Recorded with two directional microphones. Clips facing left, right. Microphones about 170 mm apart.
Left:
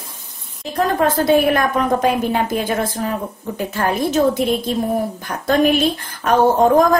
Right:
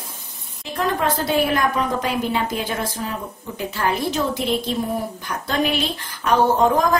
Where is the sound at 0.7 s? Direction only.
50° left (ahead or behind).